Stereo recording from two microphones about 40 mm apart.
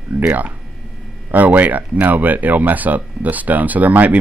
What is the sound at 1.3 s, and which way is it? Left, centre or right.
Speech, right.